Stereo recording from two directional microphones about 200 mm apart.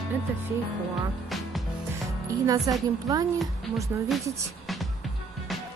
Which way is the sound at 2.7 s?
20° right (ahead or behind).